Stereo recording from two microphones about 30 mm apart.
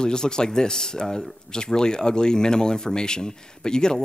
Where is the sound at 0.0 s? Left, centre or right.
Left.